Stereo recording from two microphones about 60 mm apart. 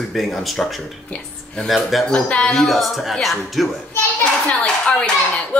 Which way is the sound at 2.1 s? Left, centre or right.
Centre.